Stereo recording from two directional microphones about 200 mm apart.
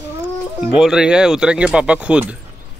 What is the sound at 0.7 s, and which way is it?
Speech, 5° right (ahead or behind).